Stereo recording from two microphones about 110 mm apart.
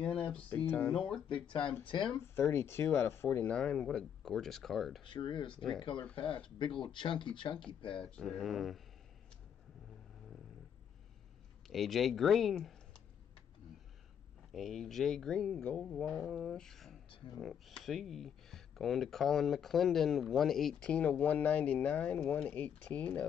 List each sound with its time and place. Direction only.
0.2 s speech: 15° left (ahead or behind)
1.3 s speech: 50° left (ahead or behind)
2.2 s speech: 20° left (ahead or behind); by 5.0 s centre (ahead or behind)
5.0 s speech: 50° left (ahead or behind)
8.2 s speech: centre (ahead or behind)
11.6 s speech: centre (ahead or behind)
14.5 s speech: centre (ahead or behind)